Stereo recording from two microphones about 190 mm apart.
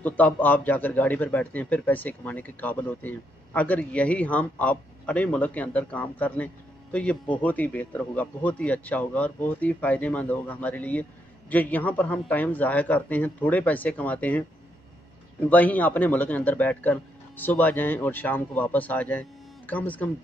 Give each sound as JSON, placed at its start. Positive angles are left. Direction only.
{"t": 0.0, "sound": "a man's voice", "side_deg": 10}
{"t": 15.4, "sound": "a man's voice", "side_deg": 10}